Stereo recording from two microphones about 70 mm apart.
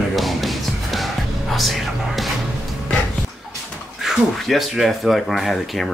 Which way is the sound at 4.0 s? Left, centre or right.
Centre.